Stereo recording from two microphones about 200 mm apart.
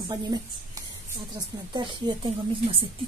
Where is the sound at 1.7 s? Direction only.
20° right (ahead or behind).